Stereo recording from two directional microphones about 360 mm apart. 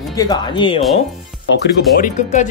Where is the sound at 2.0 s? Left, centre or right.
Centre.